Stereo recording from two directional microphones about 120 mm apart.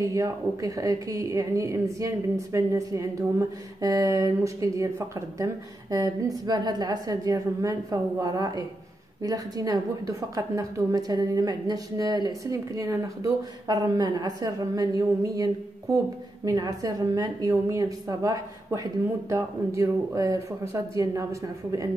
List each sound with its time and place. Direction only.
0.0 s a woman's voice: 30° right (ahead or behind)